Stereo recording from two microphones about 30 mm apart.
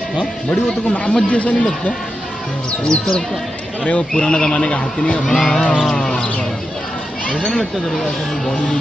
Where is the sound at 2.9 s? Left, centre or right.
Left.